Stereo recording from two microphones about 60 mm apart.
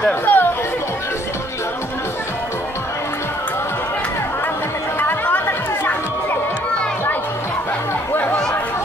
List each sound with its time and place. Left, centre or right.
0.2 s speech: left
5.0 s chatter: left
8.1 s chatter: left